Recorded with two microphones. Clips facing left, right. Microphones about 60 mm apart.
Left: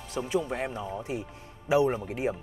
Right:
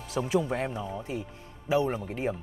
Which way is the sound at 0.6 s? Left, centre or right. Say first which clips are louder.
Even; centre.